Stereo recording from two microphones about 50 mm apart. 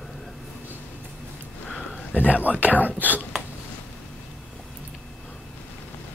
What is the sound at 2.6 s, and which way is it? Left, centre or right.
Speech, right.